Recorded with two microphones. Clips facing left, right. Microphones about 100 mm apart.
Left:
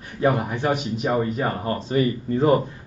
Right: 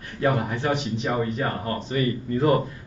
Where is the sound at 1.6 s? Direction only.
25° left (ahead or behind).